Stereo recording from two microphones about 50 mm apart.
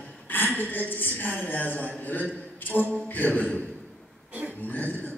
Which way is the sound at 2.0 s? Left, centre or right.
Left.